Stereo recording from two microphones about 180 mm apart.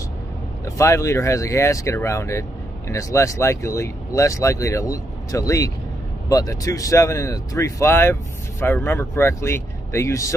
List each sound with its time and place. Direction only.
0.7 s speech: 15° left (ahead or behind)